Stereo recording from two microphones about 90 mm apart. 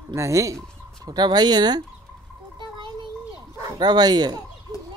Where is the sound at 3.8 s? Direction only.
50° right (ahead or behind).